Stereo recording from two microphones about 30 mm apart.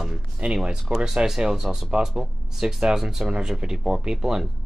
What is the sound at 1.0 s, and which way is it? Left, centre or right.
Speech, centre.